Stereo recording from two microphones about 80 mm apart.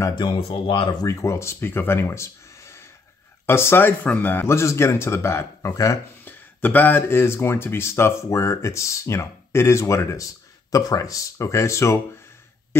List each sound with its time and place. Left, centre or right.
0.1 s speech: left
1.0 s speech: left
6.2 s speech: left